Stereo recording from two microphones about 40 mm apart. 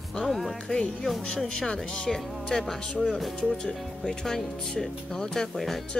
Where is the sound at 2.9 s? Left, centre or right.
Left.